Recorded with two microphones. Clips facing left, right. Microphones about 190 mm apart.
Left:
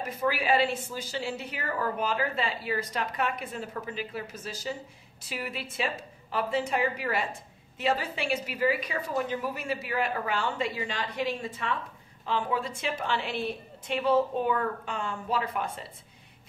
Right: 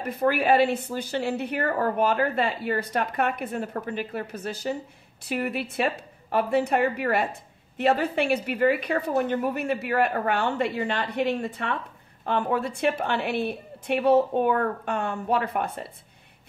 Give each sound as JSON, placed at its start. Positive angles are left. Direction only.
{"t": 0.0, "sound": "a woman's voice", "side_deg": -60}